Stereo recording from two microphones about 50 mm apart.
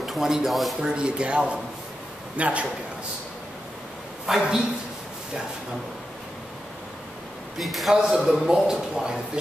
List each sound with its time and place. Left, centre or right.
0.0 s speech: centre
0.7 s a man's voice: centre
4.3 s speech: centre
7.5 s a man's voice: centre
7.9 s speech: centre